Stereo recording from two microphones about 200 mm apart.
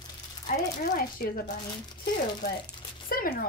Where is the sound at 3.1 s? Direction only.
45° left (ahead or behind).